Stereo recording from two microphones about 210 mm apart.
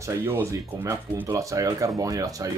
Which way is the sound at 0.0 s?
10° right (ahead or behind).